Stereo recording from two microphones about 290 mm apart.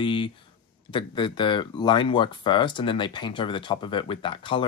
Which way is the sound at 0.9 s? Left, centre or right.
Centre.